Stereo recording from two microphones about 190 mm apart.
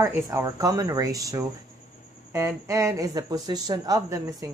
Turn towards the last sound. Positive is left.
turn(degrees=-20)  # may be behind; listen again after turning